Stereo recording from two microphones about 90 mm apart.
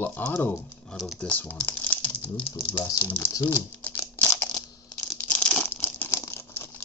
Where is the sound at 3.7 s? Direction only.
15° left (ahead or behind).